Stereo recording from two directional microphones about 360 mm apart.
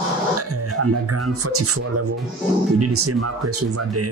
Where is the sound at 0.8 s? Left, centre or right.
Right.